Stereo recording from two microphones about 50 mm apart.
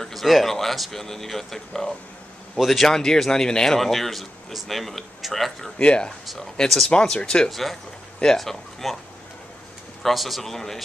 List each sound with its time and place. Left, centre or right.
0.0 s speech: centre
5.8 s speech: left
6.2 s speech: centre
6.9 s speech: centre
10.0 s speech: centre